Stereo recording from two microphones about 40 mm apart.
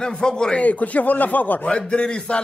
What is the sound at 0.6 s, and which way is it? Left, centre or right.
Speech, left.